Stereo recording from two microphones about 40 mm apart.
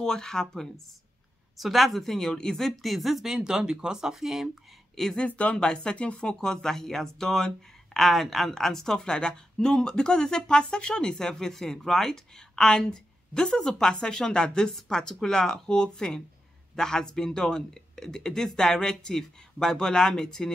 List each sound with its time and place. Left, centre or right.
0.0 s speech: centre
1.6 s speech: centre
2.2 s speech: centre
2.6 s speech: centre
3.3 s speech: centre
5.0 s speech: centre
5.3 s speech: left
5.6 s speech: left
6.3 s speech: centre